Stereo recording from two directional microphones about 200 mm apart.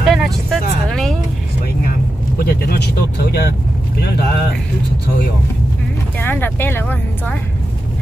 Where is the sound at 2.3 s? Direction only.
50° left (ahead or behind).